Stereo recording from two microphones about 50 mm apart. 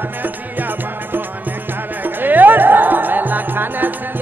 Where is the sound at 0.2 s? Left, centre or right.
Right.